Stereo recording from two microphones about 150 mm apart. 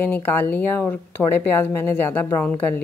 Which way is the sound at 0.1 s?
15° left (ahead or behind).